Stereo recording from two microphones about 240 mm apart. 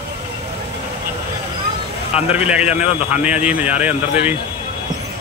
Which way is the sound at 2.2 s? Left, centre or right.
Left.